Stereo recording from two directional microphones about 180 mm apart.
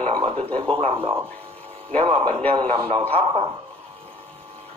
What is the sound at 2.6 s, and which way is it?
Speech, 30° right (ahead or behind).